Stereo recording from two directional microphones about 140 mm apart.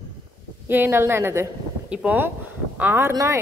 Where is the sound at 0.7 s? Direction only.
15° right (ahead or behind).